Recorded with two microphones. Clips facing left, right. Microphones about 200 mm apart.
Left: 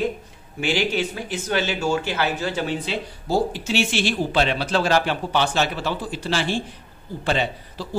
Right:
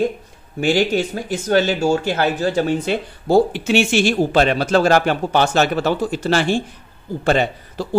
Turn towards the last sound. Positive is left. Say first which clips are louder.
# right 8 dB
turn(degrees=-50)  # may be behind; listen again after turning